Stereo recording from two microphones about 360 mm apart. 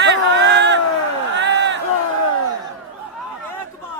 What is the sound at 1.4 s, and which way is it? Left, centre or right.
Crowd, right.